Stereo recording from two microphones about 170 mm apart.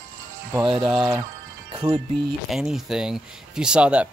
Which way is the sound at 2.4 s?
Centre (ahead or behind).